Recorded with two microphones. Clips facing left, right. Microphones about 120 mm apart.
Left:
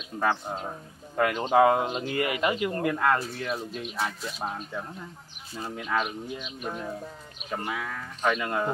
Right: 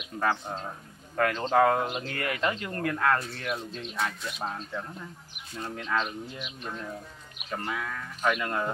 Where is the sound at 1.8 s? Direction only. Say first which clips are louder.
Left 3 dB; 20° left (ahead or behind).